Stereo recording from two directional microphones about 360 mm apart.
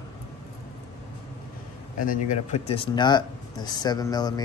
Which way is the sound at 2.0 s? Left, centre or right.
Centre.